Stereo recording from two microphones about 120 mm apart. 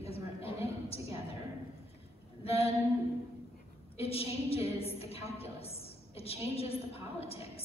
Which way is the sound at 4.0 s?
55° left (ahead or behind).